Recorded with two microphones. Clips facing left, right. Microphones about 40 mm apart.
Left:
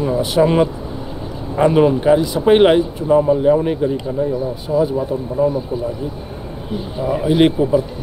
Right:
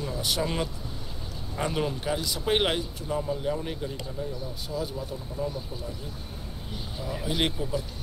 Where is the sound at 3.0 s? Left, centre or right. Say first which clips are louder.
Left 17 dB; left.